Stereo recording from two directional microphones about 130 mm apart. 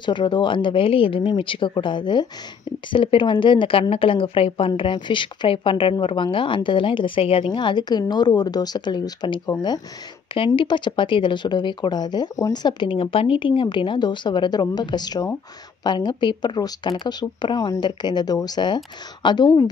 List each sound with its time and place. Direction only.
0.0 s a woman's voice: 35° left (ahead or behind)